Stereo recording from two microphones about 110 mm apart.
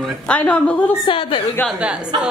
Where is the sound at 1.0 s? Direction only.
50° left (ahead or behind).